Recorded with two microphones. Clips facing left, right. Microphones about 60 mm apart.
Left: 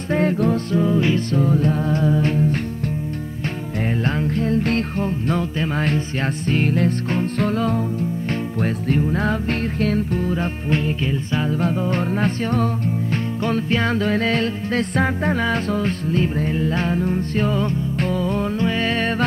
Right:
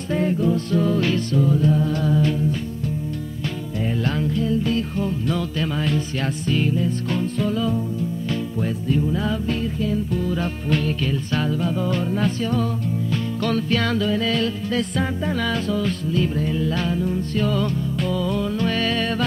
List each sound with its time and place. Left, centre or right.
0.1 s music: left
0.7 s music: centre
1.5 s music: left
4.0 s music: left
4.5 s music: left
5.0 s music: left
7.3 s music: left
10.3 s music: left
11.9 s music: left
13.4 s music: left
14.0 s music: left
18.0 s music: left